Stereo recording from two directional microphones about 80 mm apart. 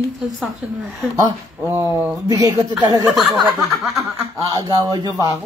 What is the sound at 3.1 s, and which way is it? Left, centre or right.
Snicker, centre.